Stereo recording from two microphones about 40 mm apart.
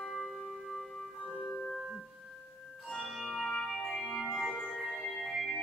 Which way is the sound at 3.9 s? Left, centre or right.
Centre.